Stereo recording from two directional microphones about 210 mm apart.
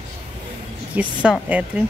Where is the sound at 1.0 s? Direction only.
10° right (ahead or behind).